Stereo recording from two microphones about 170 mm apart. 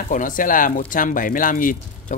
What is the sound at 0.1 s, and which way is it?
Speech, 55° left (ahead or behind).